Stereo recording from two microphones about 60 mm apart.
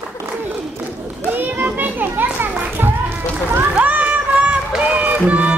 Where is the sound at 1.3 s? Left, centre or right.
Right.